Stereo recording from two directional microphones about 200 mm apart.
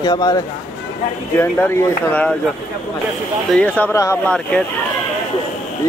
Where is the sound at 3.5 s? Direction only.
5° left (ahead or behind).